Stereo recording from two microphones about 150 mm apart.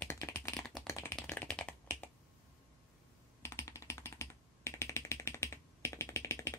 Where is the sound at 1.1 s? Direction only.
5° left (ahead or behind).